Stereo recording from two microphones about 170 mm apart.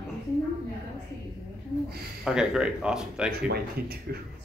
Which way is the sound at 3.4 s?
65° right (ahead or behind).